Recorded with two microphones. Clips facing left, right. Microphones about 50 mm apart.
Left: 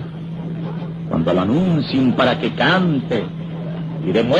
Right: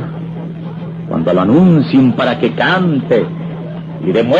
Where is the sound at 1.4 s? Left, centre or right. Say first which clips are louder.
Right 8 dB; right.